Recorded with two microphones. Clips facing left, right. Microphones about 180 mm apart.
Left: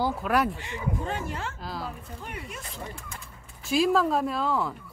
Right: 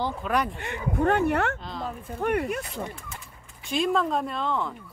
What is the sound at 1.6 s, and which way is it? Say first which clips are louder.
Speech: right 1 dB; 5° left (ahead or behind).